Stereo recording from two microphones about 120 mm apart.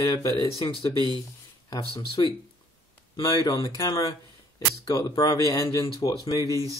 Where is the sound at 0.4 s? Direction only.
50° left (ahead or behind).